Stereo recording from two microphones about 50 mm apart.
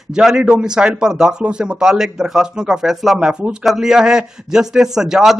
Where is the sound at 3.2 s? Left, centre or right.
Centre.